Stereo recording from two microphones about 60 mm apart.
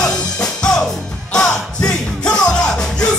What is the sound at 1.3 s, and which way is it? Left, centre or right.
Music, centre.